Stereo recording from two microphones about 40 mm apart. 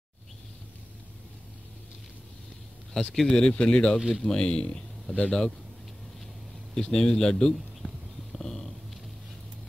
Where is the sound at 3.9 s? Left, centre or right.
Centre.